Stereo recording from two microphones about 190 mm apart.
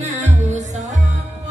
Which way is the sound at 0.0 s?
40° right (ahead or behind).